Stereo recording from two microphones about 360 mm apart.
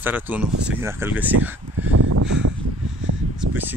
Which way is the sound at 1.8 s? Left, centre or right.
Right.